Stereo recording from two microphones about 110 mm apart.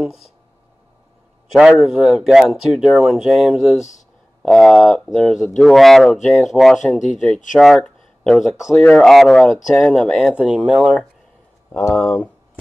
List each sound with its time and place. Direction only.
0.0 s speech: 5° right (ahead or behind)
1.5 s speech: 5° right (ahead or behind)
12.0 s speech: 15° left (ahead or behind)